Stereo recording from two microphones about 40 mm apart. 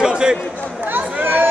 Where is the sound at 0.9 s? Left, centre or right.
Right.